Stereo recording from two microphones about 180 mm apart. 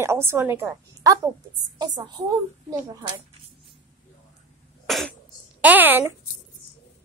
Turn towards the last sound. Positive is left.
turn(degrees=-10)  # may be behind; listen again after turning